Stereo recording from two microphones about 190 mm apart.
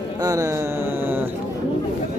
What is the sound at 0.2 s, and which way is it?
Speech, 20° right (ahead or behind).